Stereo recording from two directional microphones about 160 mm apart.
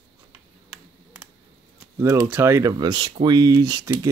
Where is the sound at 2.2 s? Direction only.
15° right (ahead or behind).